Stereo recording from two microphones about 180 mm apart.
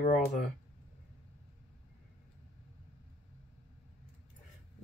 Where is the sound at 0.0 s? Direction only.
45° left (ahead or behind).